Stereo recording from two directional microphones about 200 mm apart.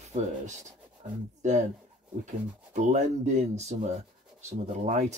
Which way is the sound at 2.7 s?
35° right (ahead or behind).